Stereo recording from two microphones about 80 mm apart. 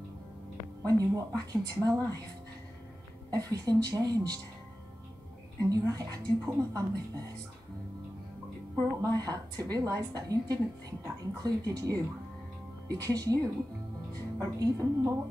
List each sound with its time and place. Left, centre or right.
0.8 s a woman's voice: right
3.3 s a woman's voice: right
5.7 s a woman's voice: right
9.0 s a woman's voice: right